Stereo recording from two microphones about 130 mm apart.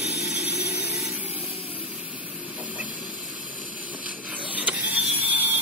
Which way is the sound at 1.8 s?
10° right (ahead or behind).